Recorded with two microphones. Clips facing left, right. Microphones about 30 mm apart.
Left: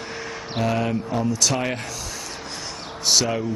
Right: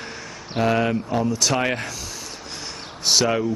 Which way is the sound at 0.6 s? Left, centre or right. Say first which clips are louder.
Right 3 dB; centre.